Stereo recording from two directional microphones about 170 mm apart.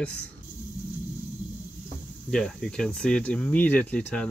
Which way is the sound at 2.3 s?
5° left (ahead or behind).